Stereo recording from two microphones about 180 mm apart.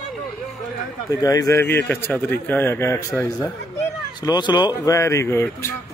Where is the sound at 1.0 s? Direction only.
20° left (ahead or behind).